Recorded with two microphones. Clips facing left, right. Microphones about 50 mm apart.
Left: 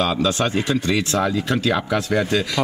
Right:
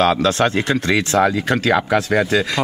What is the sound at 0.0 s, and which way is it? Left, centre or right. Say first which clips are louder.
Speech: right 4 dB; right.